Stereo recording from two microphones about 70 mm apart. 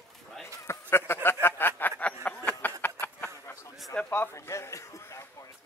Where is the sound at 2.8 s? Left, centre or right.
Left.